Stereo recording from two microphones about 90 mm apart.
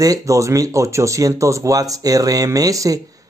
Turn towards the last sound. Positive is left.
turn(degrees=-40)  # may be behind; listen again after turning